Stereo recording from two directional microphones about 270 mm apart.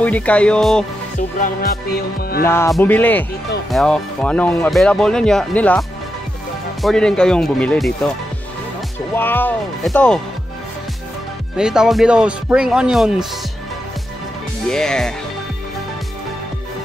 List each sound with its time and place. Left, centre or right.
0.0 s speech: centre
1.4 s music: left
2.4 s speech: centre
9.1 s speech: centre
11.5 s speech: centre
14.7 s speech: centre